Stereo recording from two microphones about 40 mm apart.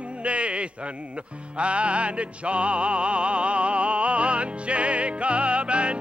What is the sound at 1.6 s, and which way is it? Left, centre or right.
Music, right.